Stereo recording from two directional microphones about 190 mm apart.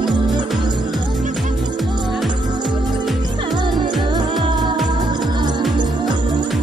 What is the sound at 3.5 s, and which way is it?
Music, 25° right (ahead or behind).